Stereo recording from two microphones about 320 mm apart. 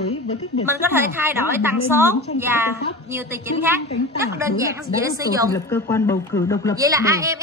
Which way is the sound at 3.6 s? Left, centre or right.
Centre.